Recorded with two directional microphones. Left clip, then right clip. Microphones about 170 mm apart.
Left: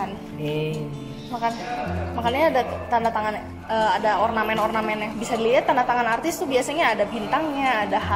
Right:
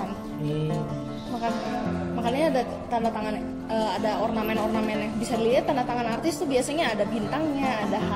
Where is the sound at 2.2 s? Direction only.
30° right (ahead or behind).